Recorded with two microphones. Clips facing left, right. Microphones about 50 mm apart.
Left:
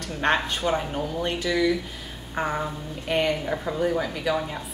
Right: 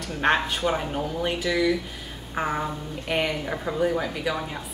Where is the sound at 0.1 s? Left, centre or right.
Centre.